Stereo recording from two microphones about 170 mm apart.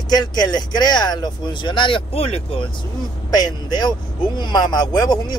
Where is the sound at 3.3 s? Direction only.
25° left (ahead or behind).